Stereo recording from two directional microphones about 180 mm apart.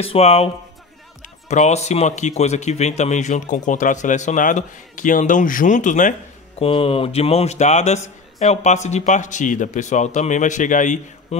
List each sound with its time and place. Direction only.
0.0 s a man's voice: 35° left (ahead or behind)
1.5 s speech: 40° left (ahead or behind)
6.6 s a man's voice: 30° left (ahead or behind)